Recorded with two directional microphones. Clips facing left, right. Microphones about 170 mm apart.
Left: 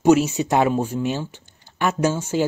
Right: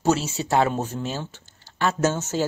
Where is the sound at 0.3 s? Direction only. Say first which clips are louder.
Left 3 dB; 20° left (ahead or behind).